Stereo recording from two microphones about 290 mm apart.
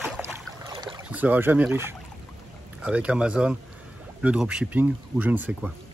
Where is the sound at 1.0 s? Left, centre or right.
Centre.